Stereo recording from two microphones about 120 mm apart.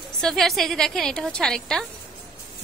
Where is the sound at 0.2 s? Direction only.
Centre (ahead or behind).